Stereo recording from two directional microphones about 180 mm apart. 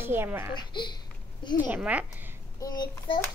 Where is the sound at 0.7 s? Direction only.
25° left (ahead or behind).